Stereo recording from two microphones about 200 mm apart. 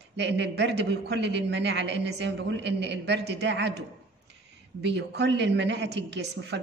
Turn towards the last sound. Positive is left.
turn(degrees=-60)  # may be behind; listen again after turning